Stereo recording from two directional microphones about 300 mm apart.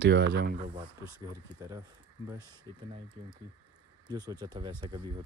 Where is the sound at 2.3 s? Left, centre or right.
Centre.